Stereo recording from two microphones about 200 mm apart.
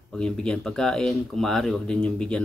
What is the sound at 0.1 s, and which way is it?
Speech, 5° left (ahead or behind).